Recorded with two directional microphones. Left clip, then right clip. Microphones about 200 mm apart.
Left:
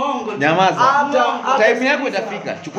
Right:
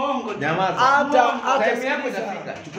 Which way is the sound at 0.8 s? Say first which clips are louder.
Left 2 dB; 45° right (ahead or behind).